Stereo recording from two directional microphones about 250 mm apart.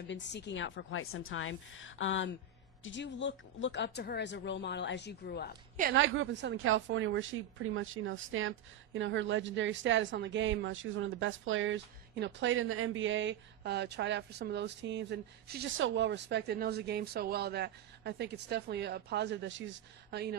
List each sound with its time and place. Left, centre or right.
0.0 s speech: left
5.9 s speech: right